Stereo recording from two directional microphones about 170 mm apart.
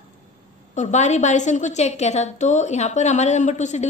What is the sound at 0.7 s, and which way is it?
A woman's voice, 45° left (ahead or behind).